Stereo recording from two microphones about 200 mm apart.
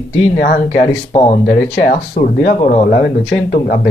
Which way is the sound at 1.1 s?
25° left (ahead or behind).